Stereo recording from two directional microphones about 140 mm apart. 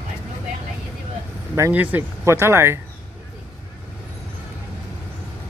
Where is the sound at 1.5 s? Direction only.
15° right (ahead or behind).